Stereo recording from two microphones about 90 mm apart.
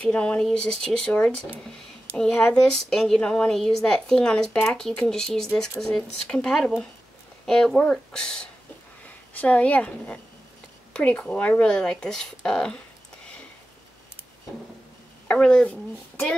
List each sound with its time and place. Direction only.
0.1 s a woman's voice: 10° left (ahead or behind)
15.2 s a woman's voice: 10° left (ahead or behind)